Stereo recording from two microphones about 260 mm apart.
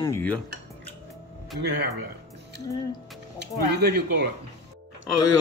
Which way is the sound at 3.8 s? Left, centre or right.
Right.